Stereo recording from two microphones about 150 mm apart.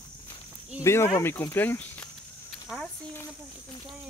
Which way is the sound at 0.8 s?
15° left (ahead or behind).